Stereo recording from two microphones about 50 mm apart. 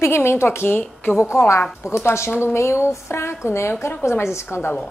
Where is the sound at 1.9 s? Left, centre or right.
Left.